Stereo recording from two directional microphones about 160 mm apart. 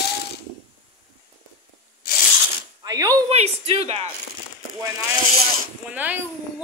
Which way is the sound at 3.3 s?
40° right (ahead or behind).